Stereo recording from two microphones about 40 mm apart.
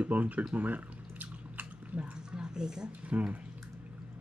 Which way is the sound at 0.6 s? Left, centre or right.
Right.